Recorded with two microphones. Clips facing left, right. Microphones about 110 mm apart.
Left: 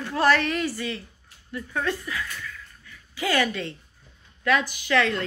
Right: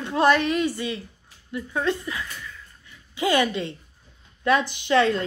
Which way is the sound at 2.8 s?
20° right (ahead or behind).